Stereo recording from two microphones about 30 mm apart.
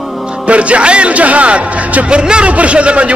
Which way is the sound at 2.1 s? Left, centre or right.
Right.